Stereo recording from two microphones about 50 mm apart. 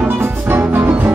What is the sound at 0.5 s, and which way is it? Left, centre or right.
Music, right.